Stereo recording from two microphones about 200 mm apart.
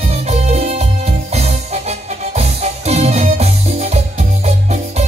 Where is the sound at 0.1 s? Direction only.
30° right (ahead or behind).